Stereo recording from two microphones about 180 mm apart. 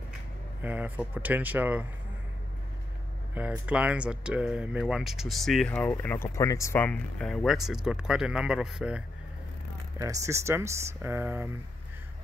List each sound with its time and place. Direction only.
0.6 s speech: 10° right (ahead or behind)
3.3 s speech: 10° right (ahead or behind)
9.9 s speech: 20° right (ahead or behind)